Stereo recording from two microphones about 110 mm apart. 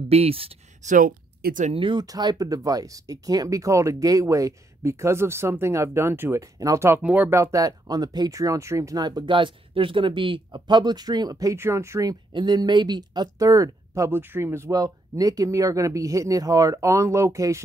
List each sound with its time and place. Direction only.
0.1 s speech: 65° right (ahead or behind)
1.7 s speech: 50° right (ahead or behind)
2.0 s speech: 35° right (ahead or behind)
11.5 s speech: 25° right (ahead or behind)